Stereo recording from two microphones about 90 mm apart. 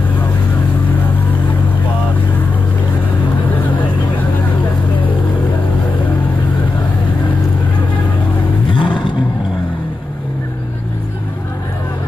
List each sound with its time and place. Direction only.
8.6 s vehicle: 70° left (ahead or behind)